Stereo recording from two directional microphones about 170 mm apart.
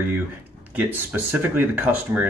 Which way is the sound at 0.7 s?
10° right (ahead or behind).